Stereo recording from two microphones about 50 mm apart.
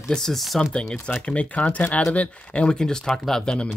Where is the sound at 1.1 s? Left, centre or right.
Left.